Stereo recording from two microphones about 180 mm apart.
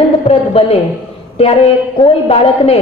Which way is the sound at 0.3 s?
35° left (ahead or behind).